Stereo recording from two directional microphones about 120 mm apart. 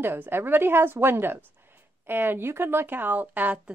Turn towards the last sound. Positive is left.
turn(degrees=-10)  # may be behind; listen again after turning